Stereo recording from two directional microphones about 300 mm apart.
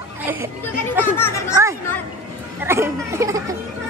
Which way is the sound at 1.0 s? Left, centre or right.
Centre.